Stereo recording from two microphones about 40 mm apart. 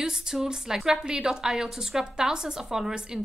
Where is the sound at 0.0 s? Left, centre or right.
Centre.